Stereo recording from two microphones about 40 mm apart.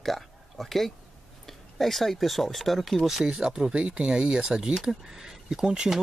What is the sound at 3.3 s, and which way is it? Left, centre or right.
Speech, centre.